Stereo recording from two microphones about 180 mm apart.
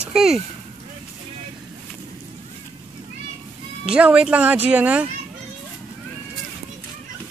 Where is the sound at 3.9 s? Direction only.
5° right (ahead or behind).